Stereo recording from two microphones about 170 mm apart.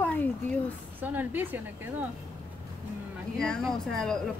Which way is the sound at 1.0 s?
10° right (ahead or behind).